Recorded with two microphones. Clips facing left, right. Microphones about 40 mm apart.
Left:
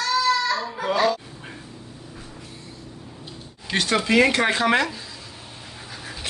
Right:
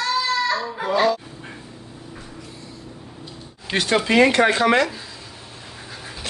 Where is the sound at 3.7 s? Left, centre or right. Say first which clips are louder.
Right 2 dB; centre.